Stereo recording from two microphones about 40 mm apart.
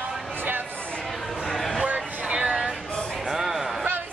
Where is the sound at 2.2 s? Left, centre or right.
Right.